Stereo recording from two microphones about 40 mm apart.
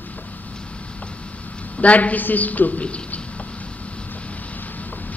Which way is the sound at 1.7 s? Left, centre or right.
Left.